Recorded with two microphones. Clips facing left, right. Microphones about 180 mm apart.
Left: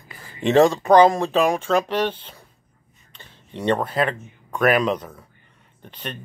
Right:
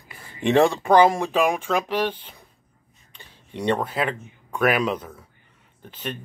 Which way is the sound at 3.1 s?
10° right (ahead or behind).